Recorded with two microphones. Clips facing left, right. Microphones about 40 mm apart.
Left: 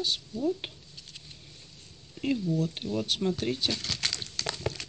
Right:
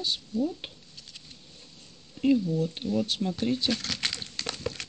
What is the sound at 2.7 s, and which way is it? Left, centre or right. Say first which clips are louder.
Speech: right 3 dB; centre.